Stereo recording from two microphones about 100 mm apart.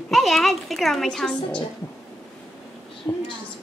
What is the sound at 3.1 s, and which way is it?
Speech, 25° left (ahead or behind).